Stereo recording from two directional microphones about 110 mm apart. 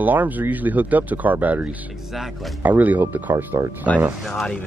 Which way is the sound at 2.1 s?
Centre (ahead or behind).